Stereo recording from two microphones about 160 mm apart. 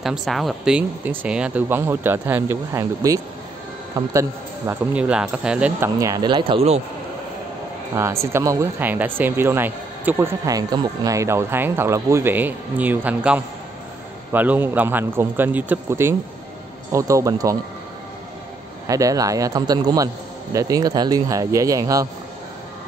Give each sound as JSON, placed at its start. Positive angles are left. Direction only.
{"t": 0.0, "sound": "speech", "side_deg": 0}
{"t": 5.9, "sound": "speech", "side_deg": -20}
{"t": 7.9, "sound": "speech", "side_deg": -15}
{"t": 18.9, "sound": "speech", "side_deg": -20}